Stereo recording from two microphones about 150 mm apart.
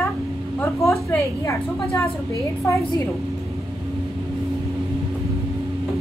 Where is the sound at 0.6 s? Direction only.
20° left (ahead or behind).